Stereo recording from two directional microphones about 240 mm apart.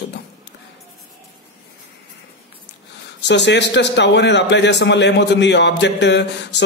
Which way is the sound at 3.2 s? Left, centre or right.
Left.